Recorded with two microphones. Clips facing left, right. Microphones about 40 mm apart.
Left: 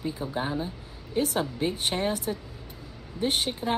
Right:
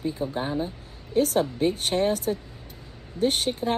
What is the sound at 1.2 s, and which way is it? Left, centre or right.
Speech, left.